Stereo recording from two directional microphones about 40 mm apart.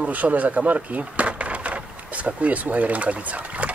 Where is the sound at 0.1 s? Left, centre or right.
Right.